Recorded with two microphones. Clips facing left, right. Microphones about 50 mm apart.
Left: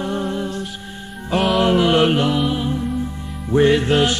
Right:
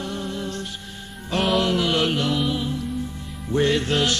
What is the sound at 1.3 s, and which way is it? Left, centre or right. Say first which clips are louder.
Music: left 4 dB; centre.